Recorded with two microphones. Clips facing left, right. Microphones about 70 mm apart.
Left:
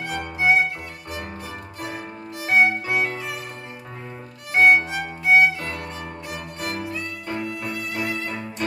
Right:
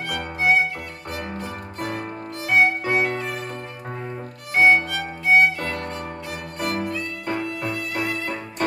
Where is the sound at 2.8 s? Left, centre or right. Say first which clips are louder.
Right 2 dB; right.